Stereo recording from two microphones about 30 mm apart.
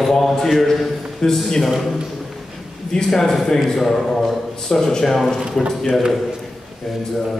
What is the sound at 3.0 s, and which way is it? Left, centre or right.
Speech, centre.